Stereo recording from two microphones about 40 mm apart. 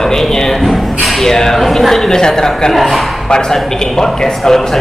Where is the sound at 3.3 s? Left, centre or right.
Centre.